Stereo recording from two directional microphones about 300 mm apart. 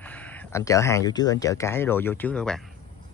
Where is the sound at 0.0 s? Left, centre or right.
Centre.